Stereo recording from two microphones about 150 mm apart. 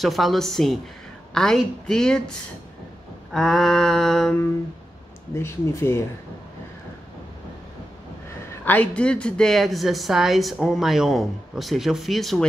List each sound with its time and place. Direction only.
0.0 s speech: centre (ahead or behind)
3.3 s speech: centre (ahead or behind)
5.3 s speech: 15° left (ahead or behind)
8.6 s speech: 10° left (ahead or behind)